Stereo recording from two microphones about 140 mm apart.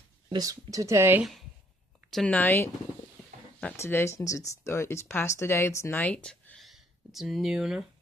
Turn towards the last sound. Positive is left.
turn(degrees=-5)  # may be behind; listen again after turning